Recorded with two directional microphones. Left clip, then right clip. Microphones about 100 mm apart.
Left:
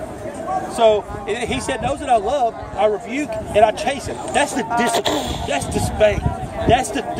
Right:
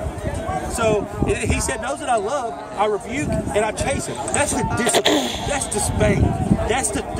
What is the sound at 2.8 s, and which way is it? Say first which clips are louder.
A man's voice: left 3 dB; 35° right (ahead or behind).